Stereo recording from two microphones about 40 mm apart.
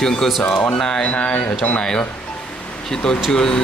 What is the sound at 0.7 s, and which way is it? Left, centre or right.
Speech, centre.